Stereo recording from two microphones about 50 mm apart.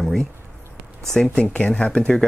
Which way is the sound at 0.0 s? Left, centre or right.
Centre.